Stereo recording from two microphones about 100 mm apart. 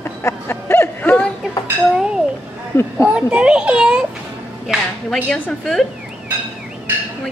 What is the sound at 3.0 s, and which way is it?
A child's voice, 10° right (ahead or behind).